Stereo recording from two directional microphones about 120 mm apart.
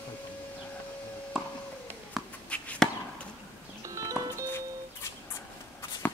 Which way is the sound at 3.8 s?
25° right (ahead or behind).